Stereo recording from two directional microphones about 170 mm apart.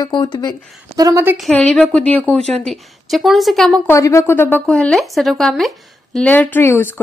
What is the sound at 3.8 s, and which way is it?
Speech, 15° left (ahead or behind).